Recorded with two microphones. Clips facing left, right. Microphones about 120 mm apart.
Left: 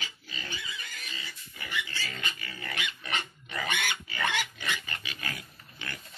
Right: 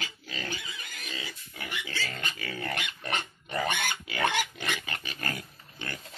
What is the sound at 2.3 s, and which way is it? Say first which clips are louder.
Dog: right 7 dB; 90° right.